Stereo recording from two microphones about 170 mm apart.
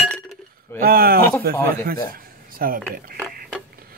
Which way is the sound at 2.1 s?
60° right (ahead or behind).